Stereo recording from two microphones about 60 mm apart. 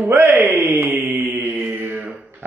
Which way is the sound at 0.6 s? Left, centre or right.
Right.